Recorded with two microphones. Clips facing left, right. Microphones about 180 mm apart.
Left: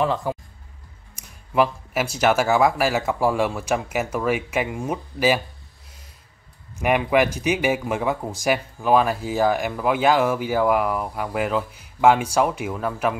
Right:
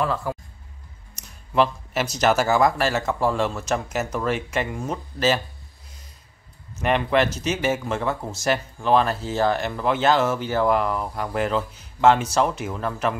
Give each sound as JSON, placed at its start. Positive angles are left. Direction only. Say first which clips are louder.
{"t": 0.0, "sound": "speech", "louder": "left 2 dB", "side_deg": 20}
{"t": 6.8, "sound": "speech", "louder": "left 1 dB", "side_deg": 10}